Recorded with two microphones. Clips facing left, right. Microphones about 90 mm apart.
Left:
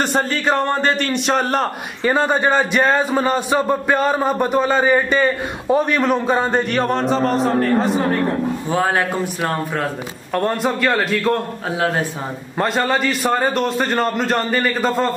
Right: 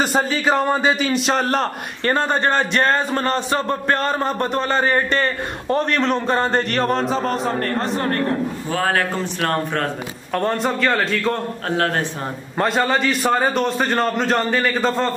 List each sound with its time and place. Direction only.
0.0 s a man's voice: centre (ahead or behind)
8.6 s a man's voice: 20° left (ahead or behind); by 15.0 s 5° left (ahead or behind)